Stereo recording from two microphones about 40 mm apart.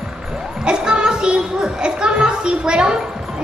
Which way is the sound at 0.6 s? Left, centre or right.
Right.